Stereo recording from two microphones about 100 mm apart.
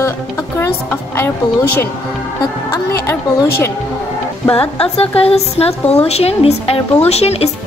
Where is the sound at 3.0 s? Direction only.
25° left (ahead or behind).